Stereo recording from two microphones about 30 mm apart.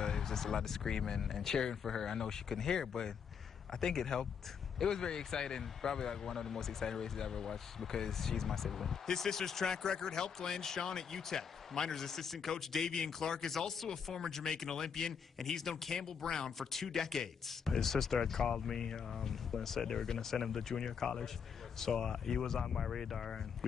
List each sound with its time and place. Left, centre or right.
0.2 s speech: centre
15.7 s speech: left
20.7 s speech: left; by 23.3 s centre